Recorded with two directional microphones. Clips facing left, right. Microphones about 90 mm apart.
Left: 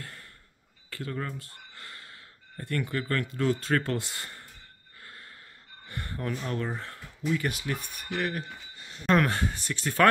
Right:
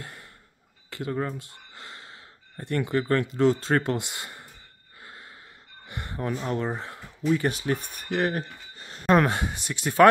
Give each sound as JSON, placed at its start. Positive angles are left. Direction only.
{"t": 0.0, "sound": "a sound", "side_deg": -20}
{"t": 0.8, "sound": "speech", "side_deg": -20}
{"t": 5.0, "sound": "wheeze", "side_deg": -20}
{"t": 5.9, "sound": "a sound", "side_deg": -20}
{"t": 6.4, "sound": "speech", "side_deg": -20}
{"t": 7.3, "sound": "speech", "side_deg": -30}
{"t": 9.0, "sound": "speech", "side_deg": -20}